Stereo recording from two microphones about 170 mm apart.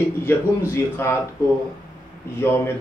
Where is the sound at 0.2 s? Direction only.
15° left (ahead or behind).